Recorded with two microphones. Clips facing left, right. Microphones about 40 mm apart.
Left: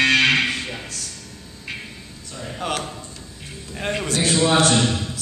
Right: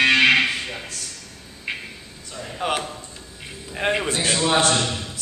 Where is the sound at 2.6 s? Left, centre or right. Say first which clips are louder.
Right 2 dB; centre.